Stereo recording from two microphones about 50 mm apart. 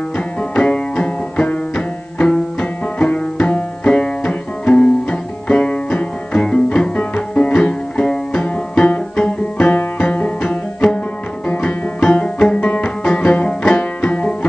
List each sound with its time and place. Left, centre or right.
0.4 s music: left
10.4 s music: left
12.0 s music: left